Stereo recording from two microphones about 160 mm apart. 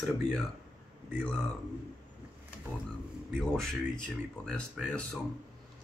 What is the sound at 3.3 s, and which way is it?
Speech, 5° left (ahead or behind).